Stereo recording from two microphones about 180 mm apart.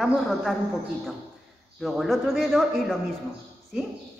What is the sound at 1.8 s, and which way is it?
A woman's voice, centre (ahead or behind).